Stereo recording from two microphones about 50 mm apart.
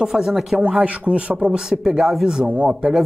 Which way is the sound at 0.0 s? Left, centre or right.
Centre.